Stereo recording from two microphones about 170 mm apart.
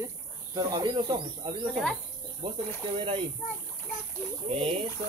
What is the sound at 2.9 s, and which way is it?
Speech, 35° right (ahead or behind).